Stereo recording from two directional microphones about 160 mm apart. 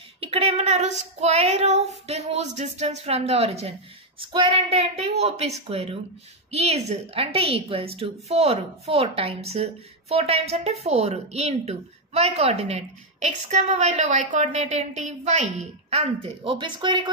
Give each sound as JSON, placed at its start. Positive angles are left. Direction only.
{"t": 0.2, "sound": "a woman's voice", "side_deg": -40}